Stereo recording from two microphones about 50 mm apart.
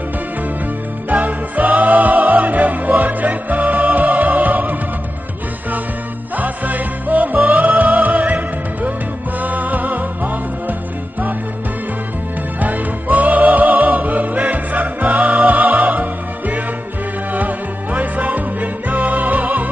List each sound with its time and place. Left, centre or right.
1.0 s music: right
6.3 s music: right
12.5 s music: right